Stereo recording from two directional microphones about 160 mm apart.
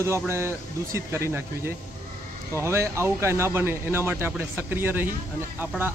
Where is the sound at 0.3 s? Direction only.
15° right (ahead or behind).